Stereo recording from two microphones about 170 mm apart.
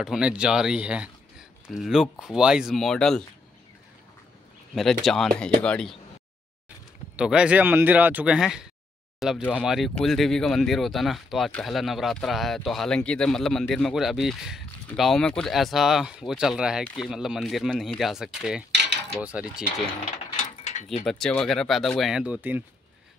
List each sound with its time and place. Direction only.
0.0 s speech: 5° right (ahead or behind)
4.7 s speech: centre (ahead or behind)
7.2 s speech: 5° right (ahead or behind)
20.4 s mechanisms: 40° left (ahead or behind)
21.0 s speech: 5° left (ahead or behind)